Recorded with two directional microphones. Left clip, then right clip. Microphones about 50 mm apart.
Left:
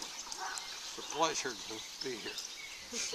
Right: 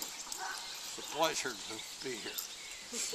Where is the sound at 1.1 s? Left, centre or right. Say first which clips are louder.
Even; centre.